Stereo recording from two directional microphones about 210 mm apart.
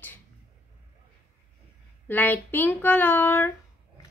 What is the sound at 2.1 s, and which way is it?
Speech, 10° left (ahead or behind).